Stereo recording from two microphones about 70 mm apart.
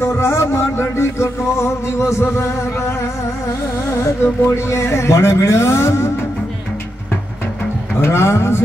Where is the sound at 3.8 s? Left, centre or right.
Left.